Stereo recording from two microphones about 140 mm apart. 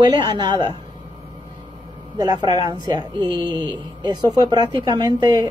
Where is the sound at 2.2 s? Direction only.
25° right (ahead or behind).